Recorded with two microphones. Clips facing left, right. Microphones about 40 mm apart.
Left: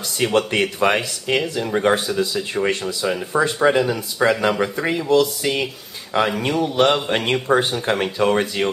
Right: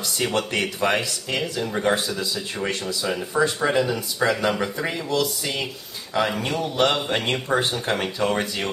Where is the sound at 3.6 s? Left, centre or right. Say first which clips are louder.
Left 8 dB; left.